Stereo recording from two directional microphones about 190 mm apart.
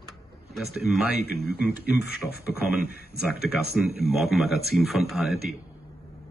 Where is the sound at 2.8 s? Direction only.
50° left (ahead or behind).